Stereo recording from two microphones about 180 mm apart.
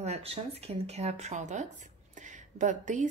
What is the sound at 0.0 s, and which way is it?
A woman's voice, 35° right (ahead or behind).